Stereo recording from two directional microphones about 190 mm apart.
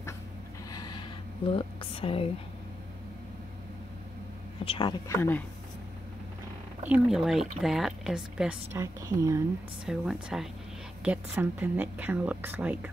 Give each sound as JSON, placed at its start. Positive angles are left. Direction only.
{"t": 0.7, "sound": "gasp", "side_deg": 20}
{"t": 1.5, "sound": "a woman's voice", "side_deg": 30}
{"t": 4.6, "sound": "speech", "side_deg": 25}
{"t": 6.8, "sound": "speech", "side_deg": -5}
{"t": 8.7, "sound": "a woman's voice", "side_deg": -15}
{"t": 9.8, "sound": "a woman's voice", "side_deg": 0}